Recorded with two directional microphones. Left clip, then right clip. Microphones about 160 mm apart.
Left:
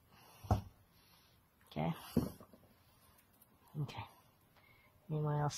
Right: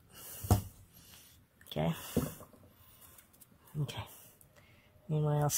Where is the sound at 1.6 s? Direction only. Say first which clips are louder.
Right 5 dB; 70° right (ahead or behind).